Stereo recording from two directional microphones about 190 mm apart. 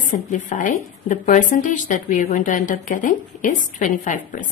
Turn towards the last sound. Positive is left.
turn(degrees=45)  # may be behind; listen again after turning